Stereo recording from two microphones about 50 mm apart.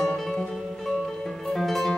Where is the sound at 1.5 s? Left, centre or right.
Centre.